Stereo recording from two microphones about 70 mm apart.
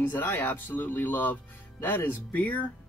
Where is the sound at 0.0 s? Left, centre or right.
Left.